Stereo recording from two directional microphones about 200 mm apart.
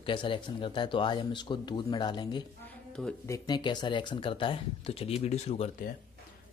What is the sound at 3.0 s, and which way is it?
Speech, 5° left (ahead or behind).